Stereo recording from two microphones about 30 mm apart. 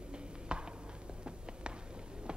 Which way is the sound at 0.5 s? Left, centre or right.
Right.